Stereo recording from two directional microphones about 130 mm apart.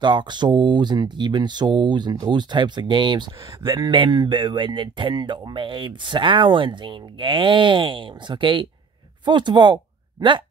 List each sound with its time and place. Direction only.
0.0 s speech: 35° right (ahead or behind)